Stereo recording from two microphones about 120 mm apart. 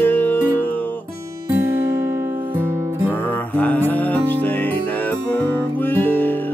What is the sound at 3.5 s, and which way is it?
Mantra, 15° left (ahead or behind).